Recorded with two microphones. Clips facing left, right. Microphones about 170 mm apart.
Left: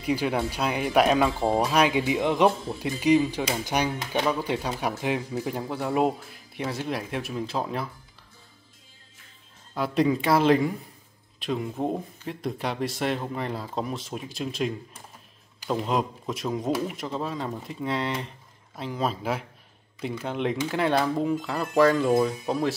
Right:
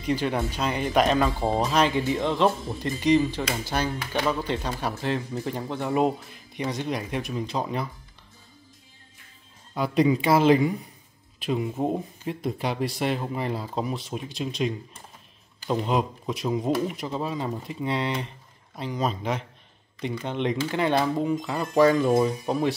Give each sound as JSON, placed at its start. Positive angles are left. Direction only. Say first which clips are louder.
{"t": 0.0, "sound": "speech", "louder": "even", "side_deg": 10}
{"t": 9.8, "sound": "speech", "louder": "right 2 dB", "side_deg": 0}